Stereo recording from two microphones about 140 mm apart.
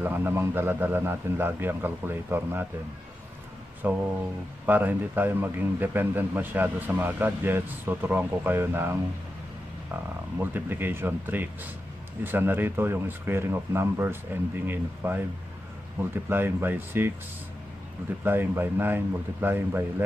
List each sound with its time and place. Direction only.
0.0 s a man's voice: 15° right (ahead or behind)
3.8 s a man's voice: 10° right (ahead or behind)
10.4 s a man's voice: 15° right (ahead or behind)
18.2 s a man's voice: 15° right (ahead or behind)